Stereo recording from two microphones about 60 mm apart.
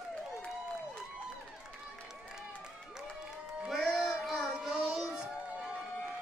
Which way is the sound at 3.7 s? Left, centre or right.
Centre.